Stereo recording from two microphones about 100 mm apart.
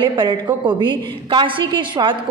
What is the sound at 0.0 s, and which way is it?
A woman's voice, 50° right (ahead or behind).